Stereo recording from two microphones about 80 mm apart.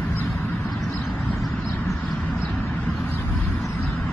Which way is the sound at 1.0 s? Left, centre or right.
Left.